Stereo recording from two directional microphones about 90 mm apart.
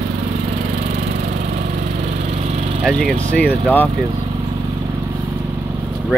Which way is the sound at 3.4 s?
20° left (ahead or behind).